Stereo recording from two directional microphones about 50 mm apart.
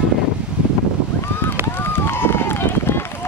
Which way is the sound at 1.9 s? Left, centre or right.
Left.